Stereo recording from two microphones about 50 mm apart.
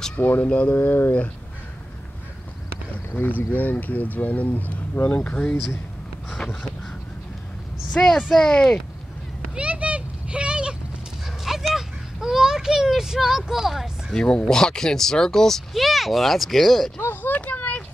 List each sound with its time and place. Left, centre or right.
0.2 s speech: left
0.5 s speech: left
0.7 s speech: left
3.2 s speech: left
6.3 s speech: centre
8.0 s speech: left
9.6 s a sound: right
11.7 s a sound: centre
14.1 s speech: centre
17.0 s a sound: left